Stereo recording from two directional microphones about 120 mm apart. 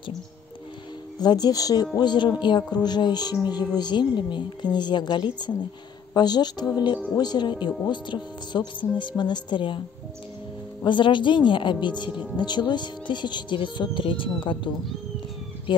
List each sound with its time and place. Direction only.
1.2 s speech: 35° left (ahead or behind)
10.9 s speech: 40° left (ahead or behind)